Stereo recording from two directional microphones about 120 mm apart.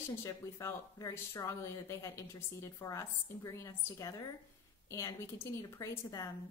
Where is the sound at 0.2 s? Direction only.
25° left (ahead or behind).